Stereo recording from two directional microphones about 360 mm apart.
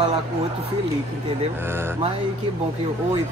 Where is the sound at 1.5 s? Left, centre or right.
Centre.